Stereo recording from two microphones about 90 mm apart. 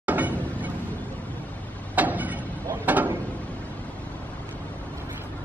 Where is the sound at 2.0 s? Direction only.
20° right (ahead or behind).